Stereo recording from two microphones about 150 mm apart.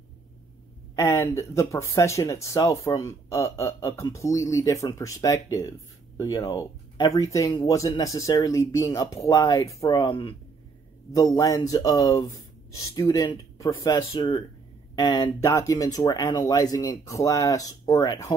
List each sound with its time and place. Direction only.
0.9 s speech: 20° left (ahead or behind); by 10.3 s 35° left (ahead or behind)
11.1 s speech: 20° left (ahead or behind)